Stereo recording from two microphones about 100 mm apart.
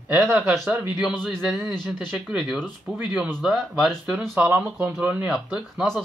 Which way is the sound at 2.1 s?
5° right (ahead or behind).